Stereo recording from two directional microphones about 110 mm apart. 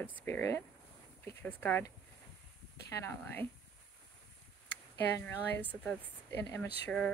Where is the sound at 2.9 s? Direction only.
20° left (ahead or behind).